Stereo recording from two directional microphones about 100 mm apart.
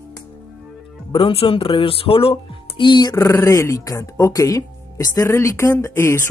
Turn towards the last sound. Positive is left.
turn(degrees=25)  # may be behind; listen again after turning